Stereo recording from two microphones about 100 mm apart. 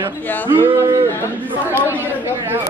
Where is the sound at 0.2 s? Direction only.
20° left (ahead or behind).